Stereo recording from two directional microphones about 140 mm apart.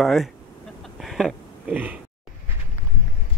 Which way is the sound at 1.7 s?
10° right (ahead or behind).